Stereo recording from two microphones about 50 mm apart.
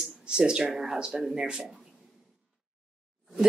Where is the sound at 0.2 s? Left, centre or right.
Centre.